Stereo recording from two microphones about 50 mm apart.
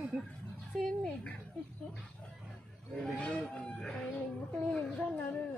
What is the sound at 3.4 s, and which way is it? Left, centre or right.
Speech, centre.